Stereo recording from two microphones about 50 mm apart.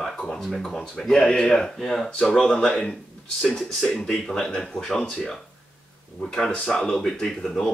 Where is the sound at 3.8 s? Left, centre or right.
Centre.